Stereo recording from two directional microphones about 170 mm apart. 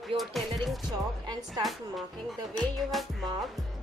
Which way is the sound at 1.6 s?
Centre (ahead or behind).